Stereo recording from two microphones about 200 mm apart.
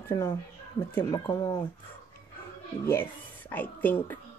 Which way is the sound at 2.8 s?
10° left (ahead or behind).